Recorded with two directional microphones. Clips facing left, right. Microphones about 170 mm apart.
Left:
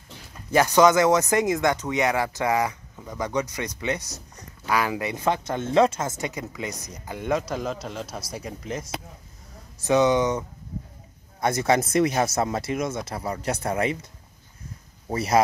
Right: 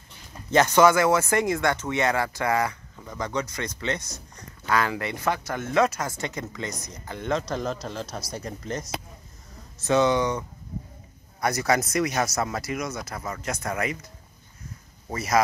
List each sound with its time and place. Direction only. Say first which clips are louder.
0.5 s speech: left 1 dB; 15° left (ahead or behind)
9.8 s speech: left 2 dB; 15° left (ahead or behind)
11.4 s speech: left 2 dB; 25° left (ahead or behind)
15.0 s speech: left 2 dB; 30° left (ahead or behind)